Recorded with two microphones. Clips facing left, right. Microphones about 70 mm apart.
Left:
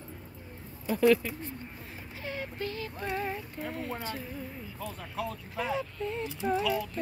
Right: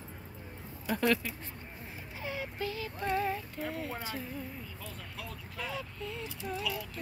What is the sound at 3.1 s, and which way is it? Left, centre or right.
Music, centre.